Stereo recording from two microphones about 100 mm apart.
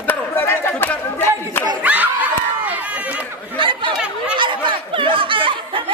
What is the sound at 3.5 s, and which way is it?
Chatter, 55° right (ahead or behind).